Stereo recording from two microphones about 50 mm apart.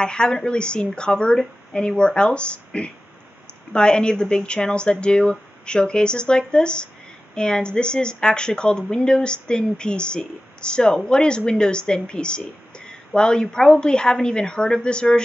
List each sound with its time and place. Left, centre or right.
0.0 s a woman's voice: centre